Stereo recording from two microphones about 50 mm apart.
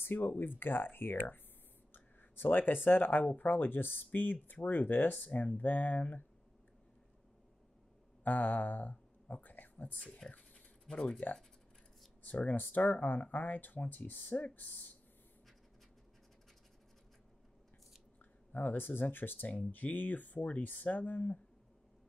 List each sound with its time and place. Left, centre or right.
0.0 s speech: left
8.2 s speech: left
9.9 s speech: centre
10.3 s a sound: left
12.2 s speech: left
18.2 s speech: left